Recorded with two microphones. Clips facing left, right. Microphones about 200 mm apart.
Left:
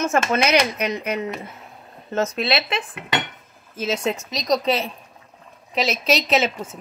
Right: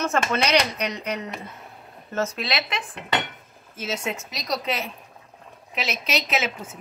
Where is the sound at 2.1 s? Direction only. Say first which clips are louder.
Left 5 dB; 25° left (ahead or behind).